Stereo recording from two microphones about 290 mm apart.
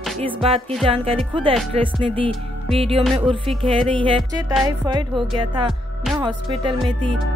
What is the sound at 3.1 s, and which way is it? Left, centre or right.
Music, centre.